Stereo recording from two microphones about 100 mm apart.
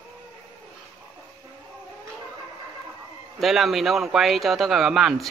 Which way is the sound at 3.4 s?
Centre (ahead or behind).